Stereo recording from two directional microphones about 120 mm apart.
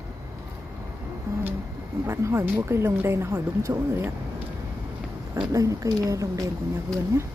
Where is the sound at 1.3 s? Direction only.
25° right (ahead or behind).